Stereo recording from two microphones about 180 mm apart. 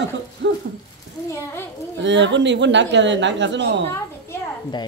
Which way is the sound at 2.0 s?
85° right.